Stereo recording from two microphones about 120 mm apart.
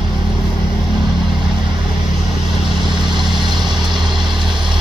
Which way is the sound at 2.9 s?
40° right (ahead or behind).